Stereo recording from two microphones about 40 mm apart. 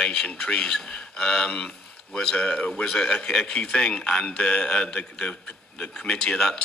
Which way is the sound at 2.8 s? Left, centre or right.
Centre.